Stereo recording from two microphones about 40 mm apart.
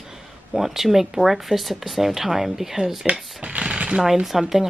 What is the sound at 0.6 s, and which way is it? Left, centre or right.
Speech, centre.